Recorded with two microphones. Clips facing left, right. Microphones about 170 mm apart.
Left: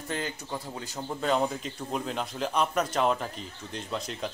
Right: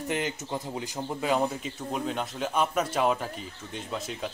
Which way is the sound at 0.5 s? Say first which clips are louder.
Right 3 dB; 15° right (ahead or behind).